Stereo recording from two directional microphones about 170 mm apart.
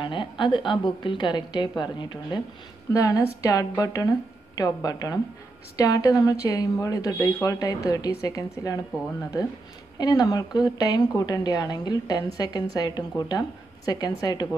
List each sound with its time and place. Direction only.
0.0 s a woman's voice: 30° left (ahead or behind)
9.9 s a woman's voice: 25° left (ahead or behind)